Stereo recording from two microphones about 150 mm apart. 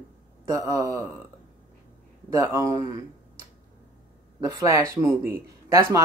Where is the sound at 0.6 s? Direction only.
25° right (ahead or behind).